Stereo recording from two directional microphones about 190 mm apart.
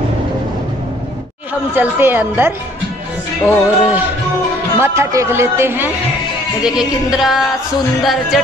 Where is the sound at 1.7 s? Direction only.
10° right (ahead or behind).